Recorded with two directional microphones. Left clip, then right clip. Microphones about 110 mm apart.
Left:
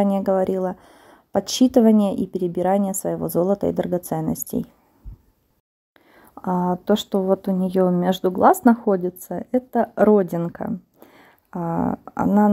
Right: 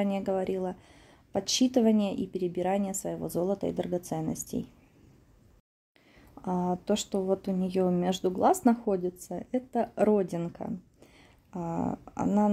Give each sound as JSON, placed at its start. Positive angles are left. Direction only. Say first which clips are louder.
{"t": 0.0, "sound": "speech", "louder": "left 10 dB", "side_deg": 55}
{"t": 6.3, "sound": "speech", "louder": "left 8 dB", "side_deg": 40}
{"t": 11.1, "sound": "a sound", "louder": "left 9 dB", "side_deg": 45}
{"t": 12.2, "sound": "speech", "louder": "left 9 dB", "side_deg": 15}